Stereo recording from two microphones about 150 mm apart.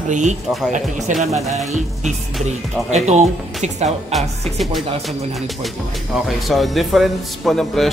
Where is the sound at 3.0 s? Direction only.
50° right (ahead or behind).